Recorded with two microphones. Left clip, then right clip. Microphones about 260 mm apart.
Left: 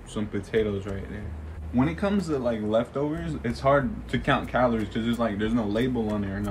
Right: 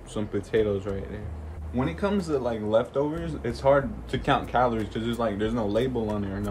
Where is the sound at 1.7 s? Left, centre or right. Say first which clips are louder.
Left 1 dB; centre.